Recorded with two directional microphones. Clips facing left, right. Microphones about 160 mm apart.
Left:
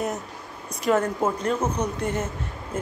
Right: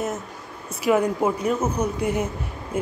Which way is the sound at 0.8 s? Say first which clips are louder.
Right 2 dB; 10° right (ahead or behind).